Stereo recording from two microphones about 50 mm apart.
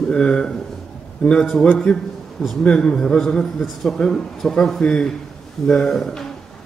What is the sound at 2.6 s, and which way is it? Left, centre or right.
Speech, centre.